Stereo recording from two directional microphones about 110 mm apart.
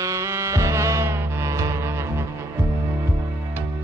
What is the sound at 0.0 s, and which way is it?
Music, 25° right (ahead or behind).